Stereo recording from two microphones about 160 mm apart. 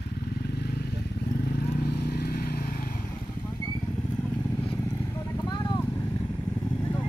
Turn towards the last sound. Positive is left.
turn(degrees=25)  # may be behind; listen again after turning